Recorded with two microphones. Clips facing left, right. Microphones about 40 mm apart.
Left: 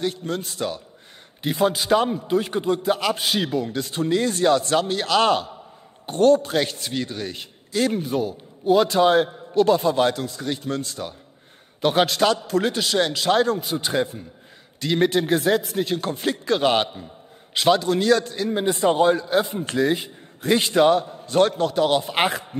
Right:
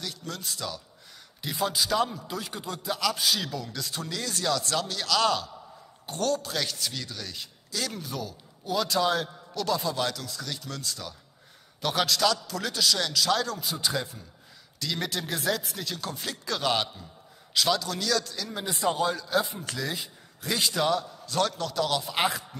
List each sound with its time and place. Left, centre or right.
0.0 s a man's voice: left